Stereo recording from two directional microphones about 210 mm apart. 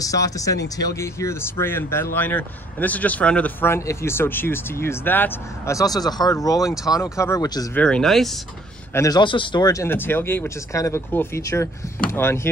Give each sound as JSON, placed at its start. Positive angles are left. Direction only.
{"t": 0.0, "sound": "speech", "side_deg": 15}
{"t": 7.8, "sound": "speech", "side_deg": 5}
{"t": 8.9, "sound": "speech", "side_deg": 15}